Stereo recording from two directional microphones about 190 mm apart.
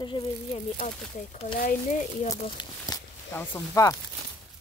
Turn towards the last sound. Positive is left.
turn(degrees=15)  # may be behind; listen again after turning